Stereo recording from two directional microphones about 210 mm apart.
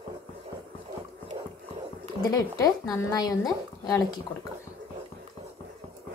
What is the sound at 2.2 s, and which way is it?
Speech, 20° left (ahead or behind).